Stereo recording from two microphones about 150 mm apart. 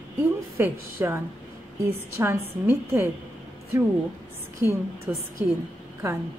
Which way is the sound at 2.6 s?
15° right (ahead or behind).